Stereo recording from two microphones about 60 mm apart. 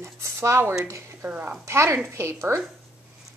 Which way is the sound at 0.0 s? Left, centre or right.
Right.